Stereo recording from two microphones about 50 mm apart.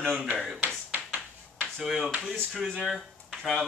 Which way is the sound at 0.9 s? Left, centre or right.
Right.